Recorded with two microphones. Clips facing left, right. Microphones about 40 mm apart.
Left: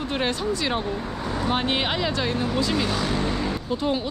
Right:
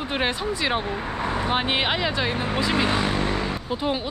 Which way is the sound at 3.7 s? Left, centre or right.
Centre.